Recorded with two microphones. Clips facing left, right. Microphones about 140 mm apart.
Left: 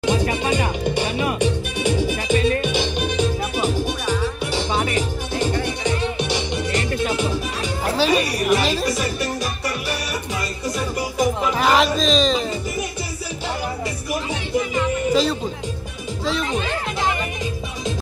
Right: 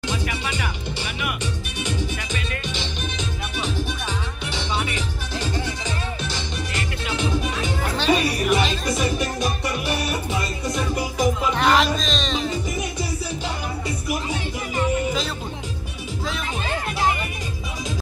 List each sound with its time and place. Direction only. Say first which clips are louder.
0.0 s music: left 8 dB; 50° left (ahead or behind)
1.4 s music: left 9 dB; 60° left (ahead or behind)
2.3 s music: left 12 dB; 35° left (ahead or behind)
2.6 s music: left 8 dB; 55° left (ahead or behind)
8.0 s music: left 1 dB; centre (ahead or behind)
11.0 s music: left 3 dB; centre (ahead or behind)